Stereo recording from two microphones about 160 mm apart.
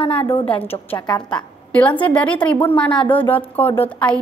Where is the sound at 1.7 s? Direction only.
10° left (ahead or behind).